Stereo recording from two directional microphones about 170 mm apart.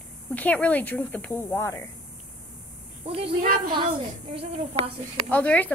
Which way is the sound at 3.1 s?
35° right (ahead or behind).